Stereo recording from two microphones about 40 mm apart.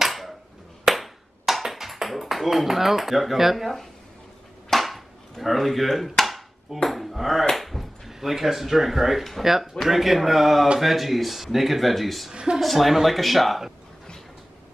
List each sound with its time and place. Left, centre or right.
0.0 s a sound: centre
0.8 s ping: centre
4.6 s dishes: centre
5.4 s speech: centre
7.4 s dog: centre
8.1 s speech: centre
12.3 s speech: right
12.5 s speech: centre